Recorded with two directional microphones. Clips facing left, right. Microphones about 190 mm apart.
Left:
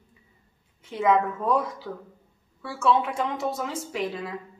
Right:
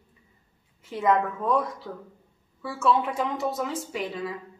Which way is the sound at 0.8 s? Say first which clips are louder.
Left 1 dB; centre (ahead or behind).